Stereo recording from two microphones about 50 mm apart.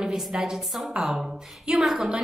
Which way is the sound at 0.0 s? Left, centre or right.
Centre.